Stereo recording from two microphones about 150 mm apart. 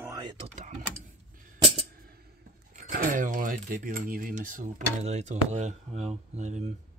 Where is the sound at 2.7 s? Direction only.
65° right (ahead or behind).